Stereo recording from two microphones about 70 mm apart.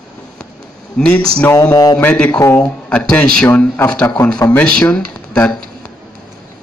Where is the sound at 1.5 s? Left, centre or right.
Left.